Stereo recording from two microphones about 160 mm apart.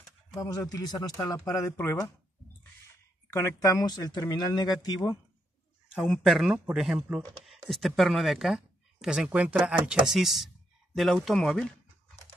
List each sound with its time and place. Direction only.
0.3 s speech: 20° left (ahead or behind)
3.3 s speech: 20° left (ahead or behind)
5.9 s speech: 5° left (ahead or behind)